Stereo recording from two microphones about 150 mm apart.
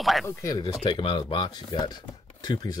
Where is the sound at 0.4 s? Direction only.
25° left (ahead or behind).